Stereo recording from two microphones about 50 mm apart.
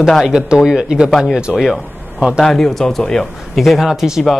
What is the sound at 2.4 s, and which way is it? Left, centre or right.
Speech, centre.